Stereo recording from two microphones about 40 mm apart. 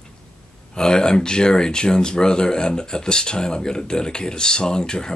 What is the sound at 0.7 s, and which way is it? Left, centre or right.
Speech, centre.